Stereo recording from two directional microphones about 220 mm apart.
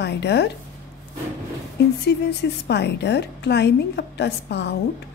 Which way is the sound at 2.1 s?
50° left (ahead or behind).